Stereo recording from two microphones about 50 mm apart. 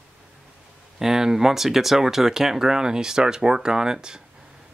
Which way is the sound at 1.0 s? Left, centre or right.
Centre.